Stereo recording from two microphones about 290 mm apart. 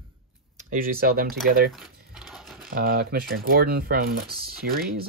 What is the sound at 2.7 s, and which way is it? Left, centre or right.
Speech, right.